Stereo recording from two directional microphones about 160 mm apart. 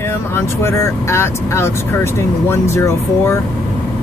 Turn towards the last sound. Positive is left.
turn(degrees=15)  # may be behind; listen again after turning